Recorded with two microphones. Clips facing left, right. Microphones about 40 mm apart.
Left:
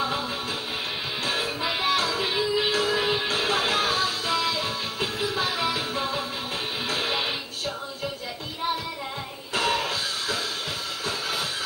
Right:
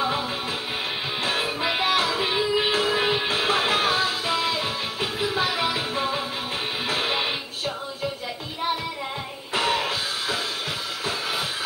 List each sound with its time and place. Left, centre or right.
1.2 s music: right
9.5 s music: right